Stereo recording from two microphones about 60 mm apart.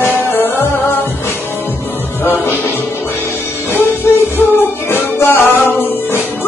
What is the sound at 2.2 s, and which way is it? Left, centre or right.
Music, left.